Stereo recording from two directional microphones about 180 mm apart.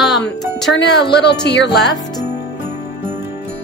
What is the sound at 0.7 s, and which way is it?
Speech, 70° left (ahead or behind).